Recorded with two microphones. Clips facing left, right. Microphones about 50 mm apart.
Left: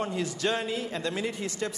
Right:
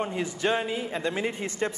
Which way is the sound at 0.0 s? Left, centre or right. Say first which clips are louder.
Right 1 dB; right.